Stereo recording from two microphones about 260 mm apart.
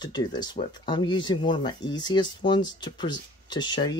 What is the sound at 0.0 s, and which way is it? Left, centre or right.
Speech, centre.